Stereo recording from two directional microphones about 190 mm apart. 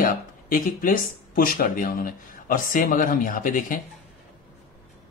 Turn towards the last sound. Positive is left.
turn(degrees=45)  # may be behind; listen again after turning